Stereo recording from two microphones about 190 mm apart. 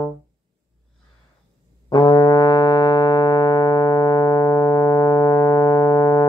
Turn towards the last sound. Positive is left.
turn(degrees=20)  # may be behind; listen again after turning